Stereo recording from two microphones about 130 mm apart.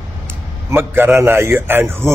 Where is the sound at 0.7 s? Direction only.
15° right (ahead or behind).